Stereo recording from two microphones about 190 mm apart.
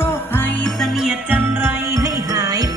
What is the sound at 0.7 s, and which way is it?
Jingle bell, 5° right (ahead or behind).